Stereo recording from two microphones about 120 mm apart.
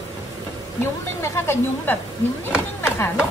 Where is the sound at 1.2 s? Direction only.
20° left (ahead or behind).